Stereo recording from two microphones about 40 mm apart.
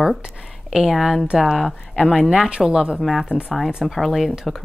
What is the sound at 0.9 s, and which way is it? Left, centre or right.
Speech, centre.